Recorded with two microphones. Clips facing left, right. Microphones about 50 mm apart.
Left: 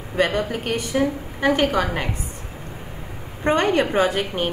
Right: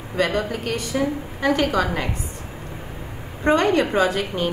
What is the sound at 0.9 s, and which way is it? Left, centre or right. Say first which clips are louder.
A woman's voice: left 2 dB; centre.